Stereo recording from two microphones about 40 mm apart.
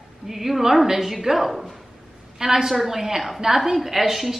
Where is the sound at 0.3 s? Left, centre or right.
Centre.